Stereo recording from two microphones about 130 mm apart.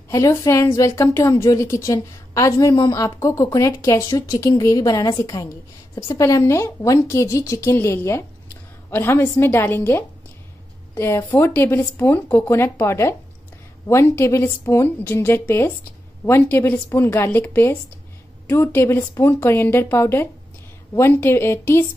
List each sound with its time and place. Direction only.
0.1 s a woman's voice: 25° left (ahead or behind)